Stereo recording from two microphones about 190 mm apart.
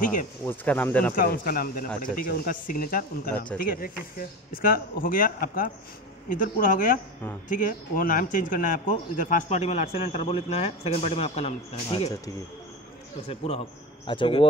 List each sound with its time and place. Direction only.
0.0 s speech: 45° left (ahead or behind)
0.5 s speech: 10° left (ahead or behind)
1.1 s speech: 50° left (ahead or behind)
13.3 s a man's voice: 30° left (ahead or behind)